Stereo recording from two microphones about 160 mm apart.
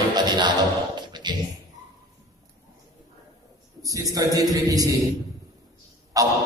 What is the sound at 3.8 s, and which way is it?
A man's voice, 20° right (ahead or behind).